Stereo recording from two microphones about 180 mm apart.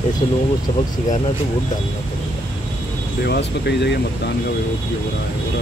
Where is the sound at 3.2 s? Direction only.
65° left (ahead or behind).